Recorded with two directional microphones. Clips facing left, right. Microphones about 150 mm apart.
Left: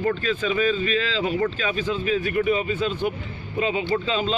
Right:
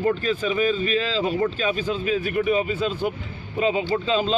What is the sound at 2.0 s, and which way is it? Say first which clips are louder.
Speech: even; 10° right (ahead or behind).